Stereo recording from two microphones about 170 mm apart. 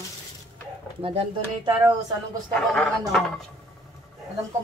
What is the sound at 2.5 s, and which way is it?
Speech, 5° left (ahead or behind).